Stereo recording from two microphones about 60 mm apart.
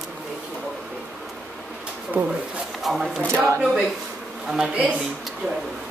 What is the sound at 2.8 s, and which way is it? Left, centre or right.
Speech, centre.